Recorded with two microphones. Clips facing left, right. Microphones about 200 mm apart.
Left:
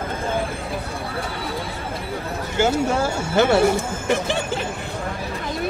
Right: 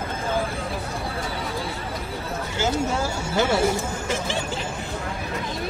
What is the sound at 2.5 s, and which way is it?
Speech, 55° left (ahead or behind).